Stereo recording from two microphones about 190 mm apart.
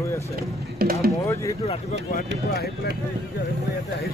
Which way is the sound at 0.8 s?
55° right (ahead or behind).